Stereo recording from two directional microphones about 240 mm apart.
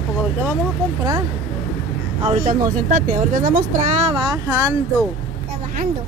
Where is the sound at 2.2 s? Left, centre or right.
Right.